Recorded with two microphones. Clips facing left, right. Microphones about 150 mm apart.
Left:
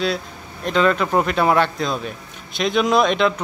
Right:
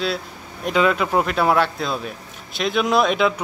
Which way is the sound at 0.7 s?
5° right (ahead or behind).